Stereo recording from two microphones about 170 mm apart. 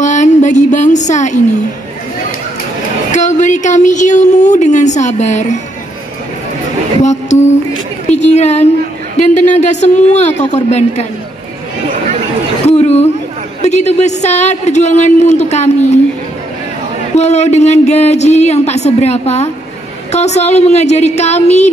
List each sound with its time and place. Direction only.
0.0 s a sound: 45° left (ahead or behind)
3.1 s speech: 45° left (ahead or behind)
7.0 s a sound: 45° left (ahead or behind)
8.1 s a woman's voice: 40° left (ahead or behind)
12.6 s chatter: 40° left (ahead or behind)
13.6 s a man's voice: 40° left (ahead or behind)
17.1 s a man's voice: 40° left (ahead or behind)